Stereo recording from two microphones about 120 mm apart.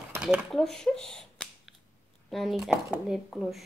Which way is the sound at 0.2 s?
10° right (ahead or behind).